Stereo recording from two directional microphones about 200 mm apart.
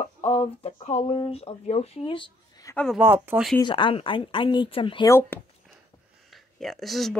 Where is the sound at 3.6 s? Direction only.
25° left (ahead or behind).